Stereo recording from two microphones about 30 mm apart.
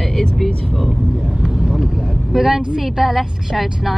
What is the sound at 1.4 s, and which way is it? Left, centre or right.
Speech, centre.